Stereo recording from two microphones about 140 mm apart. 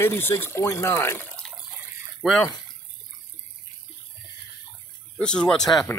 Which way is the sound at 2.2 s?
Centre (ahead or behind).